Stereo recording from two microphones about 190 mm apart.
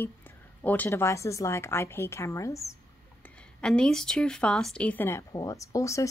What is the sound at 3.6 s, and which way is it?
A woman's voice, 5° left (ahead or behind).